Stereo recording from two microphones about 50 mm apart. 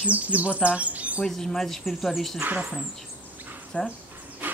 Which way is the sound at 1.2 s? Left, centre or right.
Centre.